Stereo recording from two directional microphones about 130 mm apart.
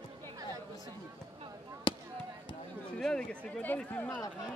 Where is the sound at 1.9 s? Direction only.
40° left (ahead or behind).